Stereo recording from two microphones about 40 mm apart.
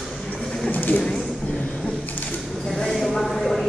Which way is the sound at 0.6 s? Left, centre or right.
Left.